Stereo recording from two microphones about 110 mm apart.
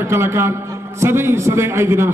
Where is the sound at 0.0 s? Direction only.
25° right (ahead or behind).